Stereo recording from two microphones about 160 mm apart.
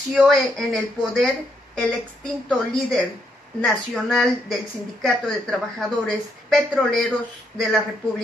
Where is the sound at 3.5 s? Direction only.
5° left (ahead or behind).